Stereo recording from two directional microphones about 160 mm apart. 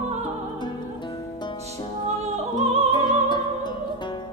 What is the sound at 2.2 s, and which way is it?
Music, 40° right (ahead or behind).